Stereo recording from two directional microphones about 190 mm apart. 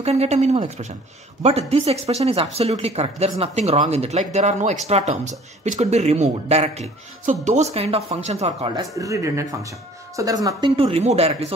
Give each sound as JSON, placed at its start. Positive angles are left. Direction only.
{"t": 0.0, "sound": "speech", "side_deg": -35}
{"t": 8.9, "sound": "speech", "side_deg": -15}